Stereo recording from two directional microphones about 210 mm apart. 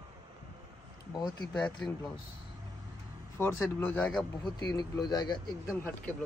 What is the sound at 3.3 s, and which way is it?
Speech, 10° left (ahead or behind).